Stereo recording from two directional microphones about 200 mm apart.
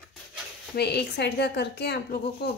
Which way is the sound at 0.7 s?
55° left (ahead or behind).